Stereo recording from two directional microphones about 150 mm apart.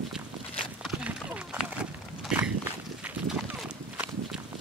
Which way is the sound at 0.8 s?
5° right (ahead or behind).